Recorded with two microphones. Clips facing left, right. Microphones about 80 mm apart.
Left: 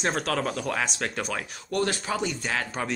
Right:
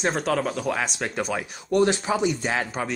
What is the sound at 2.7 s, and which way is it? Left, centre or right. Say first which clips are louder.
Speech: right 2 dB; centre.